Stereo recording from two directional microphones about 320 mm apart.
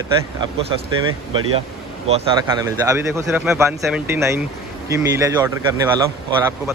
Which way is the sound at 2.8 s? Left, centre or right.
Centre.